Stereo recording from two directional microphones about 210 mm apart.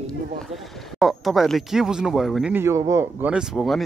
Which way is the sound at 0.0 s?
Centre (ahead or behind).